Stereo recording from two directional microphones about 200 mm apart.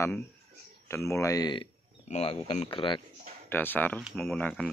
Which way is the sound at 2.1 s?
30° left (ahead or behind).